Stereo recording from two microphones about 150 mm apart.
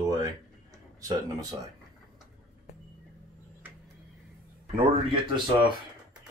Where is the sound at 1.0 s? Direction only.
25° right (ahead or behind).